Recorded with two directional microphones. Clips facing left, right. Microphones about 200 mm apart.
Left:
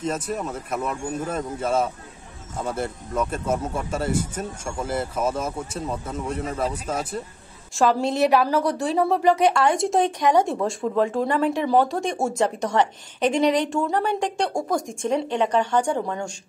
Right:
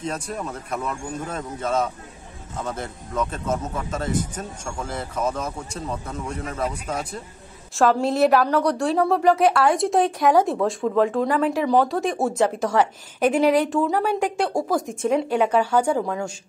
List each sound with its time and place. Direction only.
0.0 s speech: 5° left (ahead or behind)
6.2 s speech: 30° left (ahead or behind)
7.7 s a woman's voice: centre (ahead or behind)